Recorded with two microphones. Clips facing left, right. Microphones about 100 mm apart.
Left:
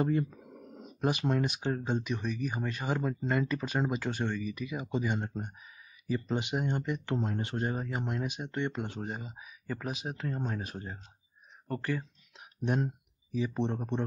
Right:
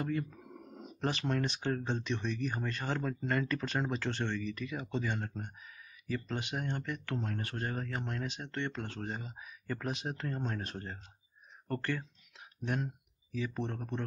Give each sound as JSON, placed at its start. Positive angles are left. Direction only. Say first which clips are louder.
{"t": 1.0, "sound": "speech", "louder": "left 4 dB", "side_deg": 15}
{"t": 12.4, "sound": "speech", "louder": "left 5 dB", "side_deg": 20}